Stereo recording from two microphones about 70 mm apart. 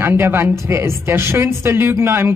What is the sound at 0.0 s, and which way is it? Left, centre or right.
A woman's voice, right.